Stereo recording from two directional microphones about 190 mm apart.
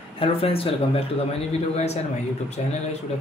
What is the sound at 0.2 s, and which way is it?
Speech, 30° left (ahead or behind).